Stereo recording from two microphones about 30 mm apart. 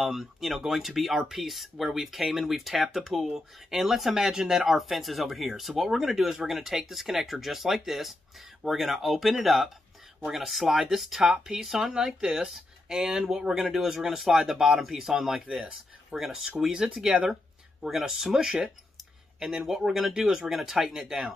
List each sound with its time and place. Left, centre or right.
0.0 s speech: centre
3.3 s speech: centre
4.1 s speech: centre
4.7 s speech: centre